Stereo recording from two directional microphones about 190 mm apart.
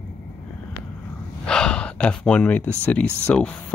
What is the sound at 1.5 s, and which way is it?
Gasp, 5° left (ahead or behind).